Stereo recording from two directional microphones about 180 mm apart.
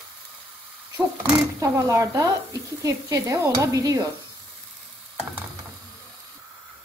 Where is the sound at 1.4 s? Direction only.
15° right (ahead or behind).